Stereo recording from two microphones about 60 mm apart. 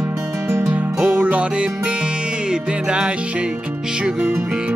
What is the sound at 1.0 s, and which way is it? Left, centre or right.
Music, right.